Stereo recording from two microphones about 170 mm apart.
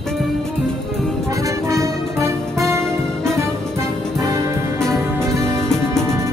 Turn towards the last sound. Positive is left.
turn(degrees=-20)  # may be behind; listen again after turning